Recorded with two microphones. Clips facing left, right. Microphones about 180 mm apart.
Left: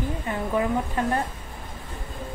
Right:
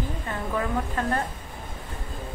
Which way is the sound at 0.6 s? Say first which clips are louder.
Left 3 dB; 15° left (ahead or behind).